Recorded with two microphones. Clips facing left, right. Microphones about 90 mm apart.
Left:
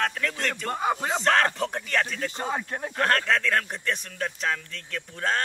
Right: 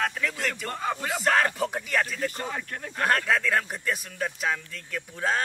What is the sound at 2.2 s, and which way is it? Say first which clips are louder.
Speech: left 2 dB; 20° left (ahead or behind).